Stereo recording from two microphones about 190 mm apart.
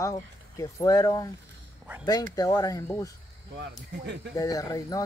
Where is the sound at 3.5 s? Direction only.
65° right (ahead or behind).